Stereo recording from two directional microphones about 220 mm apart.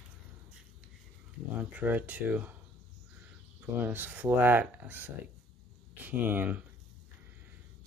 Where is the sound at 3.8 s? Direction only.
10° right (ahead or behind).